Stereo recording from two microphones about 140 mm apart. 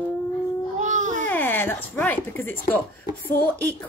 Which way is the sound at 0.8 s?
60° right (ahead or behind).